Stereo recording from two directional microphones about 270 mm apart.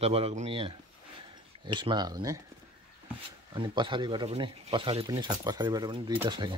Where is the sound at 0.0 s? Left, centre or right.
Right.